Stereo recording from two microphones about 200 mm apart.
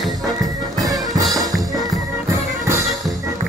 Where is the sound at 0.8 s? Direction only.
20° right (ahead or behind).